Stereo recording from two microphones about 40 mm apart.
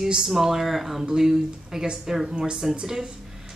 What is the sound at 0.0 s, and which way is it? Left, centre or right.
A woman's voice, centre.